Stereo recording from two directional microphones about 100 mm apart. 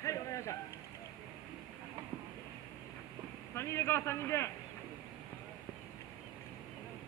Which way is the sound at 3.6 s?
25° left (ahead or behind).